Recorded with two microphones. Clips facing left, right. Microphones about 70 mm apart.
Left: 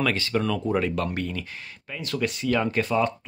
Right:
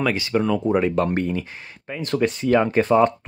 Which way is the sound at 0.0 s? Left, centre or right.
Centre.